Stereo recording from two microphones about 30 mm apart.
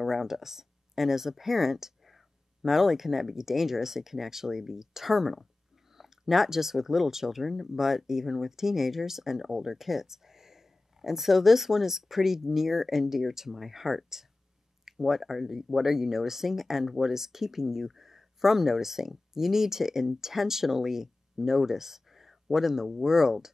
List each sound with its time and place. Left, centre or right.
0.0 s speech: centre
5.9 s chewing: centre
6.5 s speech: centre